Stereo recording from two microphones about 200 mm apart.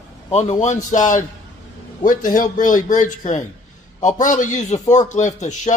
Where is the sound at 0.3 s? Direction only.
35° left (ahead or behind).